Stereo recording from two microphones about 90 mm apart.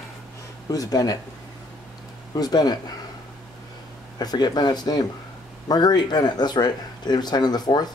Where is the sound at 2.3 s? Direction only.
45° left (ahead or behind).